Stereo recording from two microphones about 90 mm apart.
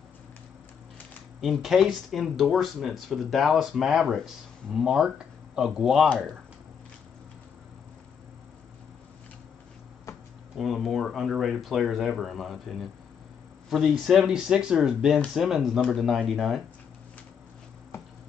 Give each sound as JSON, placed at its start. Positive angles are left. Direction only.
{"t": 1.4, "sound": "speech", "side_deg": 0}
{"t": 10.6, "sound": "speech", "side_deg": 0}
{"t": 13.7, "sound": "speech", "side_deg": -5}